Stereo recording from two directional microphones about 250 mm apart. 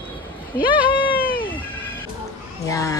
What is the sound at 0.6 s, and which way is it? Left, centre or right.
Speech, centre.